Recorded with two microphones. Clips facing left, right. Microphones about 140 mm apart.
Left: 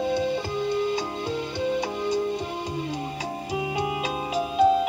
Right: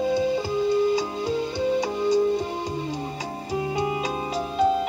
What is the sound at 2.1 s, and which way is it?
Music, 15° left (ahead or behind).